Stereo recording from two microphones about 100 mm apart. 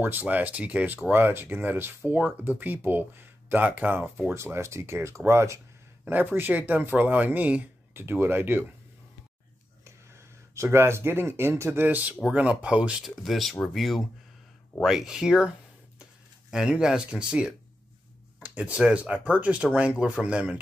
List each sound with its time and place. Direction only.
0.0 s speech: 15° right (ahead or behind)
9.8 s speech: 30° right (ahead or behind); by 20.5 s 10° right (ahead or behind)